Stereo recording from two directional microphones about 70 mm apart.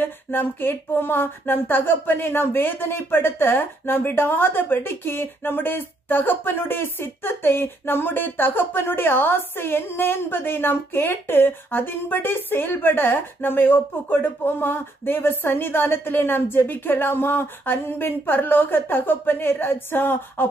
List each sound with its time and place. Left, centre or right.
0.0 s speech: left